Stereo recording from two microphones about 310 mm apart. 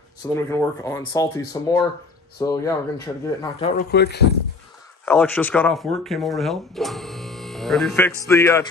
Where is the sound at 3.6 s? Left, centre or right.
Left.